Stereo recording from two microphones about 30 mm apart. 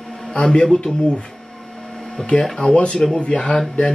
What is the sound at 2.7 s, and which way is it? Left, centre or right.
Speech, left.